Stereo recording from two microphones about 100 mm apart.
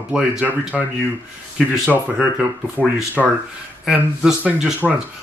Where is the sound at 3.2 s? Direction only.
5° left (ahead or behind).